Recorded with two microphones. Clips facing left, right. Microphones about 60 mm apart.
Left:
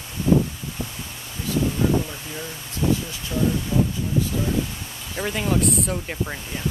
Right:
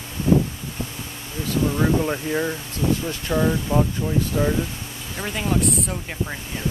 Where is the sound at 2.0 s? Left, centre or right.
Right.